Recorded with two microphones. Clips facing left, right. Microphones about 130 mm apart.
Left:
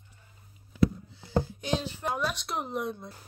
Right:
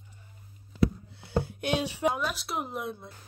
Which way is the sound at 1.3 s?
65° right (ahead or behind).